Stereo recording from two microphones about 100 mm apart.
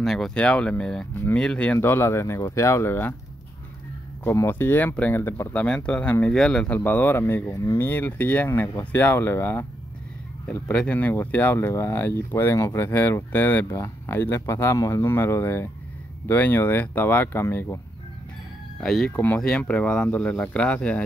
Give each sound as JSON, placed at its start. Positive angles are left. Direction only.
{"t": 0.0, "sound": "speech", "side_deg": 0}
{"t": 1.8, "sound": "speech", "side_deg": 25}
{"t": 4.2, "sound": "speech", "side_deg": 20}
{"t": 6.8, "sound": "speech", "side_deg": 20}
{"t": 7.4, "sound": "speech", "side_deg": 35}
{"t": 18.8, "sound": "speech", "side_deg": 5}
{"t": 19.1, "sound": "speech", "side_deg": 15}